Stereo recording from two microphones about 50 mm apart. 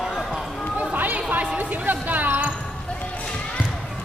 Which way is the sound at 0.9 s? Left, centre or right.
Right.